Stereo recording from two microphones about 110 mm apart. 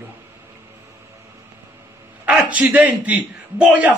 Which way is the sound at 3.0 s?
10° right (ahead or behind).